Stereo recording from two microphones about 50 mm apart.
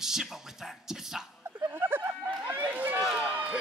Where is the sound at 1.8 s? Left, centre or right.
Right.